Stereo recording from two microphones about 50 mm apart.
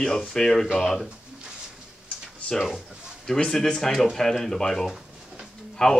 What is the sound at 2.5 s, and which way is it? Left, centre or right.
Speech, centre.